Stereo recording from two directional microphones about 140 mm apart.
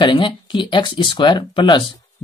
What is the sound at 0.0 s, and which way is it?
Speech, 35° left (ahead or behind).